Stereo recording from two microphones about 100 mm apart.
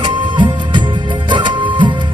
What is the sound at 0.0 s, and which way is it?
Music, 55° right (ahead or behind).